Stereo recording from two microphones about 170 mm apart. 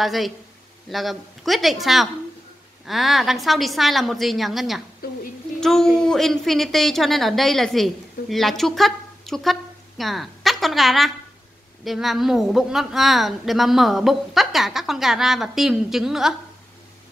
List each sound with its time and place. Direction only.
0.0 s a woman's voice: centre (ahead or behind)